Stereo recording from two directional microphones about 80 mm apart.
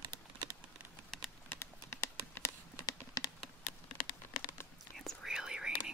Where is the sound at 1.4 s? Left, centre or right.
Left.